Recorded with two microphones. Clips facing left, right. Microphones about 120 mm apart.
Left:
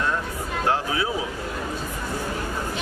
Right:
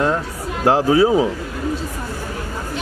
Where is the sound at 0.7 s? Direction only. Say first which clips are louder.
Right 11 dB; 35° right (ahead or behind).